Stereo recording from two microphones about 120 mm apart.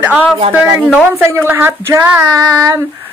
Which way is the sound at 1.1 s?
20° right (ahead or behind).